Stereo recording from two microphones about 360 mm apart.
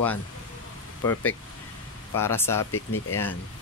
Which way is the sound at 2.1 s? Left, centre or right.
Centre.